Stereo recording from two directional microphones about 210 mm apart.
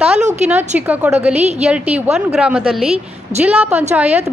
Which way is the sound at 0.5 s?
10° right (ahead or behind).